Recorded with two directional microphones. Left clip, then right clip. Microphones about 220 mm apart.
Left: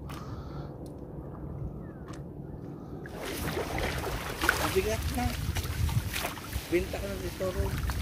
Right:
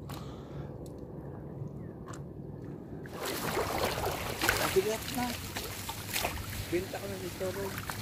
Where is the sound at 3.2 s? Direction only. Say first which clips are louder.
Right 2 dB; 45° right (ahead or behind).